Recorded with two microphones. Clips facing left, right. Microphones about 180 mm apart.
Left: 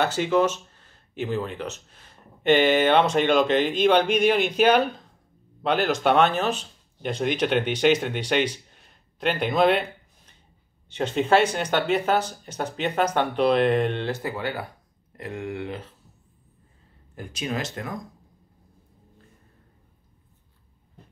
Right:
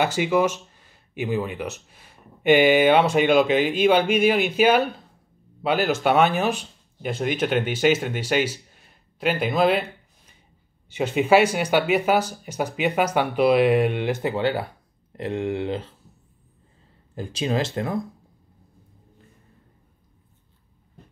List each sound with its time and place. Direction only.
0.0 s speech: 10° right (ahead or behind)
10.9 s speech: 10° right (ahead or behind); by 15.9 s 25° right (ahead or behind)
17.1 s speech: 30° right (ahead or behind)